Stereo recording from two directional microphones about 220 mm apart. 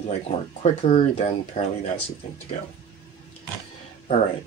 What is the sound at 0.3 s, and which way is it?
Speech, 30° left (ahead or behind).